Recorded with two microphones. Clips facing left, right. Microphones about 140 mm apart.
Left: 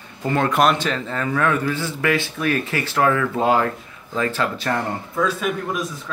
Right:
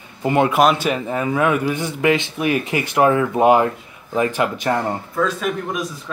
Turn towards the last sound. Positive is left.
turn(degrees=0)  # may be behind; listen again after turning